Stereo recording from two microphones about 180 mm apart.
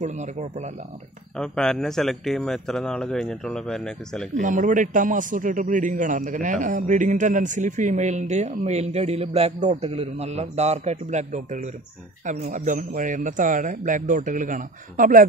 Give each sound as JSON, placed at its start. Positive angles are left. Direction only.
{"t": 0.0, "sound": "speech", "side_deg": -40}
{"t": 1.3, "sound": "a man's voice", "side_deg": 5}
{"t": 4.4, "sound": "a man's voice", "side_deg": -45}